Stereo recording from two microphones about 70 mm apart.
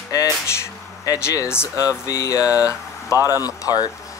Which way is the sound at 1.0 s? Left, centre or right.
Left.